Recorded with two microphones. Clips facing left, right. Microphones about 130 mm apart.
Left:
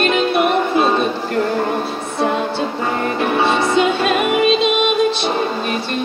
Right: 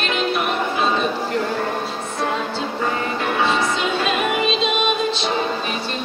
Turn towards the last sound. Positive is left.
turn(degrees=55)  # may be behind; listen again after turning